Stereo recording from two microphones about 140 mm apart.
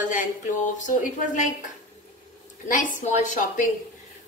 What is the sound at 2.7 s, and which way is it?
A woman's voice, 65° left (ahead or behind).